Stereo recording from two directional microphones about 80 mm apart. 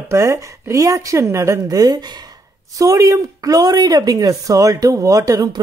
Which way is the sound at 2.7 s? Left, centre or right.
Right.